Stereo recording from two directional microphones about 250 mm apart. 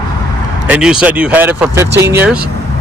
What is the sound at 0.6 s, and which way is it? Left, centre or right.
Speech, centre.